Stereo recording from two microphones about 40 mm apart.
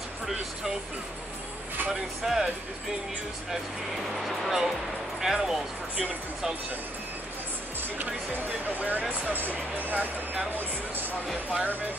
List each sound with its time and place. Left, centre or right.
1.9 s speech: centre
3.9 s speech: centre
8.0 s speech: right
11.5 s speech: right